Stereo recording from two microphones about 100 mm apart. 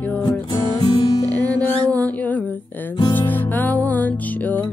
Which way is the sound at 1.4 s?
15° left (ahead or behind).